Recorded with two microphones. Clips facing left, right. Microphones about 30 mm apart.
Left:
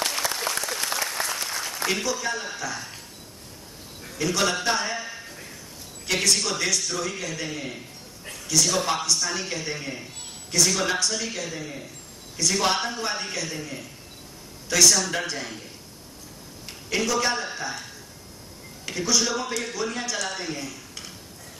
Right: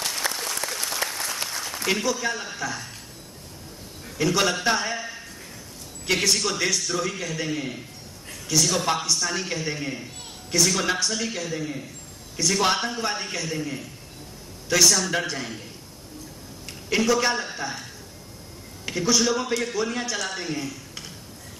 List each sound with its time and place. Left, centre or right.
0.3 s applause: centre
1.9 s a man's voice: centre
4.2 s a man's voice: centre
16.9 s a man's voice: centre
18.9 s a man's voice: centre